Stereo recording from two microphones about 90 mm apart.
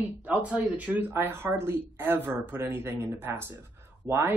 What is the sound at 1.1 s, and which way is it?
Speech, 25° right (ahead or behind).